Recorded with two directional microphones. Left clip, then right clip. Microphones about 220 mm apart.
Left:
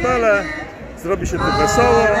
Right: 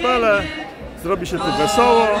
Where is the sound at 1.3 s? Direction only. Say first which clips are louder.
Left 3 dB; 10° right (ahead or behind).